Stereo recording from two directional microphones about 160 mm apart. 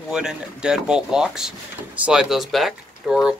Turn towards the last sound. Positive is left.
turn(degrees=-5)  # may be behind; listen again after turning